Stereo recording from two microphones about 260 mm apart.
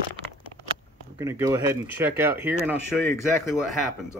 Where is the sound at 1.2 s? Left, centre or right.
Centre.